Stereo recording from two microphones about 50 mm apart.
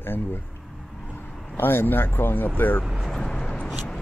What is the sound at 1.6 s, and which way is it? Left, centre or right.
Speech, left.